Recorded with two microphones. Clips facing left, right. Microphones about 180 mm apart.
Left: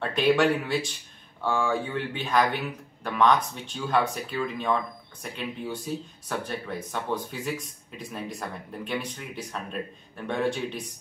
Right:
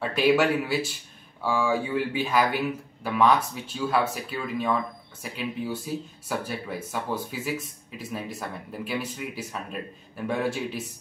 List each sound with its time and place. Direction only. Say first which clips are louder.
0.1 s speech: even; 5° right (ahead or behind)